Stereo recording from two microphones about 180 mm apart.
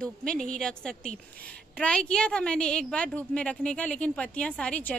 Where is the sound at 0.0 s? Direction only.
5° left (ahead or behind).